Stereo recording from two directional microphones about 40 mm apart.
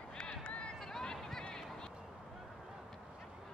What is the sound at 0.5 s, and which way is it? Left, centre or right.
Run, left.